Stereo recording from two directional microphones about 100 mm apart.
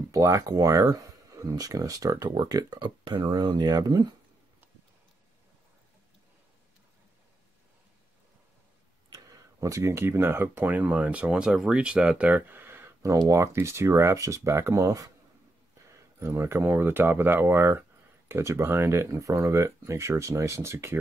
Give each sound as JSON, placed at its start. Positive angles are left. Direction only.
{"t": 0.1, "sound": "speech", "side_deg": -30}
{"t": 9.1, "sound": "speech", "side_deg": -35}
{"t": 16.2, "sound": "speech", "side_deg": -25}